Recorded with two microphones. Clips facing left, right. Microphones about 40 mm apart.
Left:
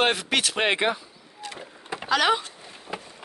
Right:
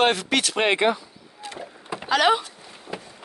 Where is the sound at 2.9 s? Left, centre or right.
Left.